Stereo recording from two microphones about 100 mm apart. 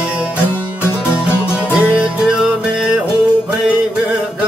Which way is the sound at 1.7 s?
15° right (ahead or behind).